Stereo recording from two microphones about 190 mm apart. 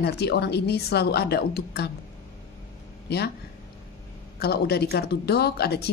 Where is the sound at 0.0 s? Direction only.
60° left (ahead or behind).